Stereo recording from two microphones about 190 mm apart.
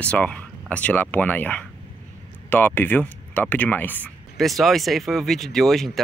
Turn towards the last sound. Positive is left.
turn(degrees=0)  # may be behind; listen again after turning